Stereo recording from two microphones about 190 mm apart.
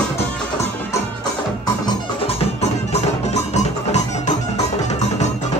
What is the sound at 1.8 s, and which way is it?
Music, 30° left (ahead or behind).